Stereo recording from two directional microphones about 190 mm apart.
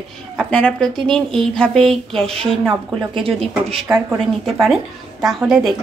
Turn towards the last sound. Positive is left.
turn(degrees=-5)  # may be behind; listen again after turning